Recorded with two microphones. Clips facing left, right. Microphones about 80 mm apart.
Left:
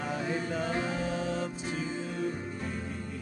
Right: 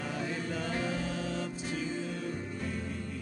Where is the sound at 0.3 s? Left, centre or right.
Centre.